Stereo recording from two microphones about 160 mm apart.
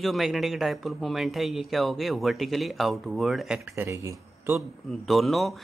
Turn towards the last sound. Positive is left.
turn(degrees=0)  # may be behind; listen again after turning